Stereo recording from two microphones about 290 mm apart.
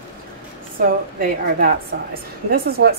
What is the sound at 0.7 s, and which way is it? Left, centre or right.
A woman's voice, right.